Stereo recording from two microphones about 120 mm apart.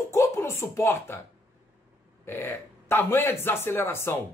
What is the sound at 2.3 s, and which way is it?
Speech, 20° left (ahead or behind).